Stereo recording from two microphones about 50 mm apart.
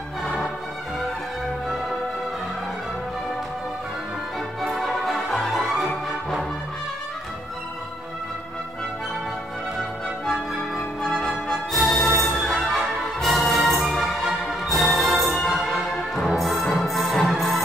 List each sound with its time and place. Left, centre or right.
0.2 s music: centre
4.6 s music: centre
11.0 s music: centre
11.7 s music: centre